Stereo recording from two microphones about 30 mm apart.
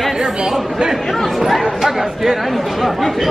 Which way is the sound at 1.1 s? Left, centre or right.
Centre.